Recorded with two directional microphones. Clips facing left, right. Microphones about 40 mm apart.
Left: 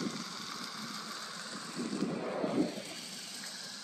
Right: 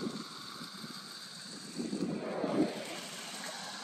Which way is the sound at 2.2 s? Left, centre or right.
Centre.